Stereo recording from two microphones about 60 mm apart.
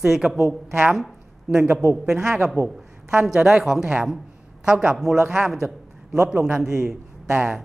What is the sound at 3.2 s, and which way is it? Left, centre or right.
A woman's voice, centre.